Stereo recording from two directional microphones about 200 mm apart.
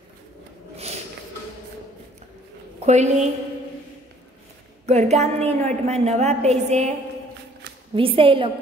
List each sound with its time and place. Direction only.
2.8 s a woman's voice: 35° right (ahead or behind)
4.8 s a woman's voice: 35° right (ahead or behind)
7.9 s a woman's voice: 25° right (ahead or behind)